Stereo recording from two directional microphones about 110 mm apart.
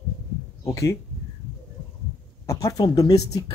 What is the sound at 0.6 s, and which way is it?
Speech, 25° left (ahead or behind).